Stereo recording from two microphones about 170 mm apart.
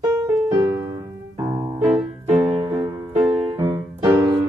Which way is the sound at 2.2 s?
30° right (ahead or behind).